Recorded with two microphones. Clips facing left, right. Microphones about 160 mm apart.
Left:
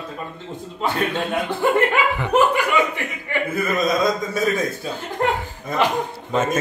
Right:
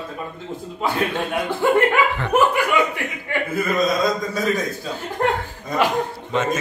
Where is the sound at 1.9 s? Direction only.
15° left (ahead or behind).